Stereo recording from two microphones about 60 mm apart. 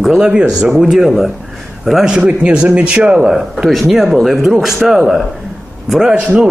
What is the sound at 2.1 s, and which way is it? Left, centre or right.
Speech, centre.